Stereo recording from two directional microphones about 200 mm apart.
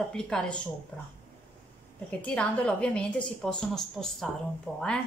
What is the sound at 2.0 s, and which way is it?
A woman's voice, 5° left (ahead or behind).